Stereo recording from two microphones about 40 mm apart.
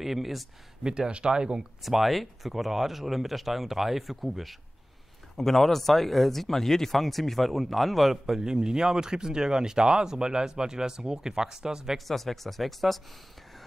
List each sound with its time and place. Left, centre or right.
0.0 s speech: centre
0.8 s speech: right
1.8 s speech: centre
12.1 s speech: centre